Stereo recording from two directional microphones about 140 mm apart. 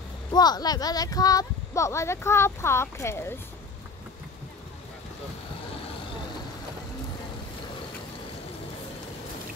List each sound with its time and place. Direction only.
0.3 s speech: 30° left (ahead or behind)